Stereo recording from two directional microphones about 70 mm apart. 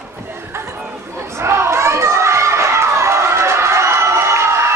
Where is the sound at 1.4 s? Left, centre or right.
Right.